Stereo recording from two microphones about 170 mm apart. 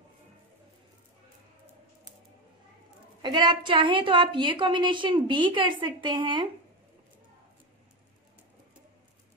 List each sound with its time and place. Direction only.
3.2 s a woman's voice: 25° right (ahead or behind)